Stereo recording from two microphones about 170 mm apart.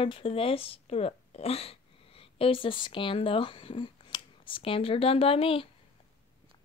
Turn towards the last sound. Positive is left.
turn(degrees=30)  # may be behind; listen again after turning